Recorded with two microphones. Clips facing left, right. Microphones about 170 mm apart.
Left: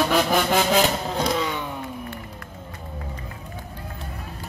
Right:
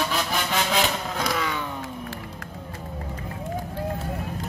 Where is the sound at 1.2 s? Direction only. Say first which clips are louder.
Left 3 dB; 25° left (ahead or behind).